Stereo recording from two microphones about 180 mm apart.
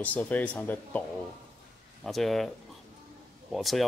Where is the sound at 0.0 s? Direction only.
10° left (ahead or behind).